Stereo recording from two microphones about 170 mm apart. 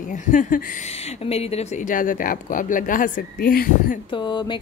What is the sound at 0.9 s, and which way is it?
A woman's voice, 35° left (ahead or behind).